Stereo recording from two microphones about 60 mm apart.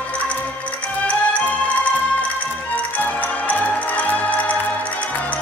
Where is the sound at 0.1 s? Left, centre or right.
Left.